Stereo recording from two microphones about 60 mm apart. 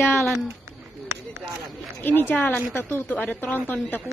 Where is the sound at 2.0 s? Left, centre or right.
Left.